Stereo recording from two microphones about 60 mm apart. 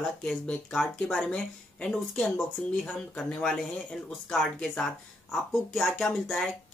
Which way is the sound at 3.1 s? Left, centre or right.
Centre.